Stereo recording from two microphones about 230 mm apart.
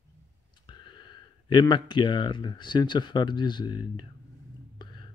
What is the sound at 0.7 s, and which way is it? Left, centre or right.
Speech, left.